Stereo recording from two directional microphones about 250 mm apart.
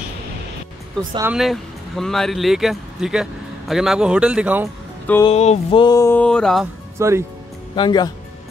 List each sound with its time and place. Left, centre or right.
1.1 s speech: centre
5.2 s mantra: left; by 6.7 s centre
7.0 s speech: centre
7.7 s mantra: centre